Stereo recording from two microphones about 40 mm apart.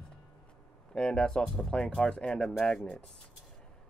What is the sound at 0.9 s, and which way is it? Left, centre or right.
Speech, left.